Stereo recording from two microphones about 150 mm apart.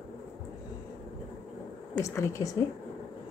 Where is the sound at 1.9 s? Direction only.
20° left (ahead or behind).